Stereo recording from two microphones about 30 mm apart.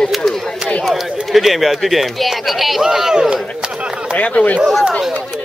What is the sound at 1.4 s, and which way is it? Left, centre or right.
Speech, centre.